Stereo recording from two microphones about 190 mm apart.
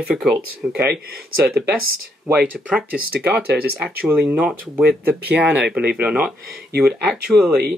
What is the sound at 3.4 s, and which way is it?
Speech, 55° right (ahead or behind).